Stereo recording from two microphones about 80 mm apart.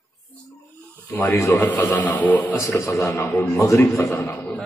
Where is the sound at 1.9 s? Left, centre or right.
Centre.